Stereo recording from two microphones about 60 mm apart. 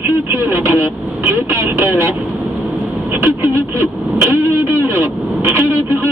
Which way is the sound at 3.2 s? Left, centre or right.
Right.